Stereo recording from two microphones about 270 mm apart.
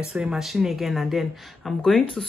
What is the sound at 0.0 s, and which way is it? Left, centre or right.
Speech, centre.